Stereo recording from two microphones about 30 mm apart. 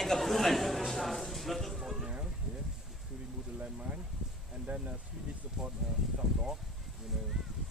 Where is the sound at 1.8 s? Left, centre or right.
Centre.